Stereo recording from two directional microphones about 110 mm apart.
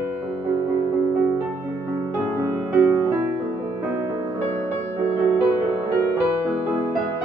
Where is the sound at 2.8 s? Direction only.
25° right (ahead or behind).